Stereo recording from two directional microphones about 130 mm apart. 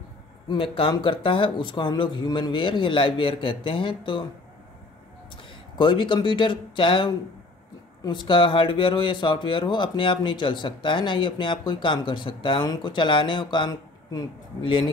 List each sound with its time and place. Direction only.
0.5 s speech: 40° left (ahead or behind)
5.8 s speech: 40° left (ahead or behind)